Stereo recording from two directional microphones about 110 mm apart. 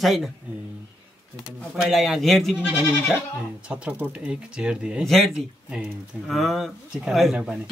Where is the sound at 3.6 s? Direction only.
10° right (ahead or behind).